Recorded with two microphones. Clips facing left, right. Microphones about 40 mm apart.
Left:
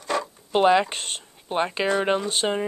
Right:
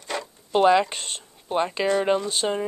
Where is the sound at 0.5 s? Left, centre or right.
Centre.